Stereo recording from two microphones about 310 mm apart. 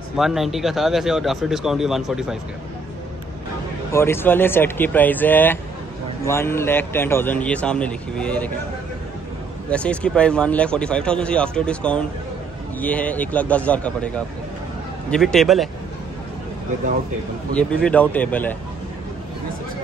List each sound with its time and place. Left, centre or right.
0.2 s speech: centre
3.9 s a man's voice: centre
9.7 s speech: centre
17.6 s speech: centre